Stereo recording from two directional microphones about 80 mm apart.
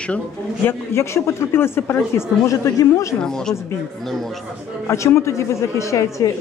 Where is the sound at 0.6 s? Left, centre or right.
Left.